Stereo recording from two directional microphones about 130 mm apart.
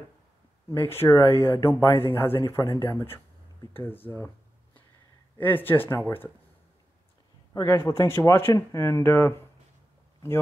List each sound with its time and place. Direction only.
0.7 s speech: 20° left (ahead or behind)
5.4 s speech: 15° left (ahead or behind)
7.6 s speech: 20° left (ahead or behind)